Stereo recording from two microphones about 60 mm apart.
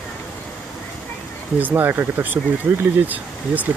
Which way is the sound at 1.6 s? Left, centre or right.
Right.